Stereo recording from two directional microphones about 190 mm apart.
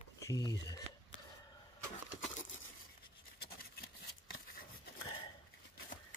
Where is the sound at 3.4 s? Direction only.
55° left (ahead or behind).